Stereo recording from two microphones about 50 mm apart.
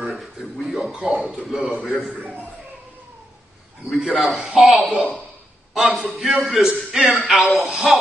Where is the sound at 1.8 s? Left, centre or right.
Centre.